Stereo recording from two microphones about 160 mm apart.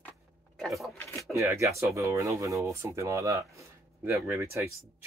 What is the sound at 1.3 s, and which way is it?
Speech, 20° right (ahead or behind).